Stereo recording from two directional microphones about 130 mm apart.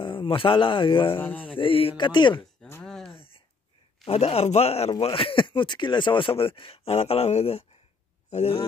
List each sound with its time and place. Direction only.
0.0 s speech: 40° left (ahead or behind)
1.2 s mantra: 15° left (ahead or behind)
1.5 s speech: 45° left (ahead or behind)
2.8 s a sound: 5° left (ahead or behind)
4.0 s speech: 50° left (ahead or behind)